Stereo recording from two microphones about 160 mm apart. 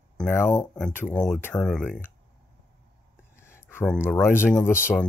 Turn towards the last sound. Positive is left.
turn(degrees=15)  # may be behind; listen again after turning